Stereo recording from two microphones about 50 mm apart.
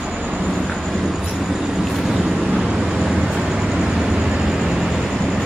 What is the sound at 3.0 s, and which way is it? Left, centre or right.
Vehicle, centre.